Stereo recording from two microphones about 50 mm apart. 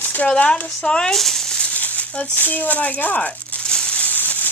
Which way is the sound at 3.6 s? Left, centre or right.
Centre.